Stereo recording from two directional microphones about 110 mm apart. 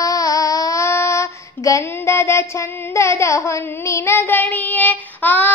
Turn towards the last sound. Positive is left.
turn(degrees=15)  # may be behind; listen again after turning